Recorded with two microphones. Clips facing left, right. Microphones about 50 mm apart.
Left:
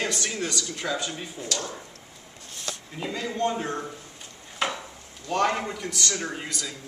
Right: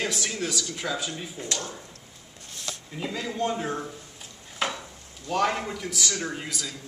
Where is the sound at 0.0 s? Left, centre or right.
Centre.